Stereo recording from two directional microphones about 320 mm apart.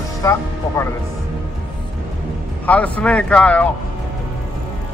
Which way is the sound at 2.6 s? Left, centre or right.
Centre.